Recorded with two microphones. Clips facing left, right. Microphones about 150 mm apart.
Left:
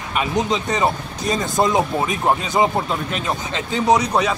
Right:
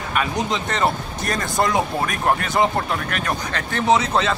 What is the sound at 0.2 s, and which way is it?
Speech, 20° left (ahead or behind).